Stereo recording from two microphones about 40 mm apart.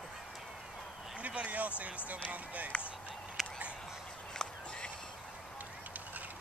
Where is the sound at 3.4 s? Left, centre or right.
Centre.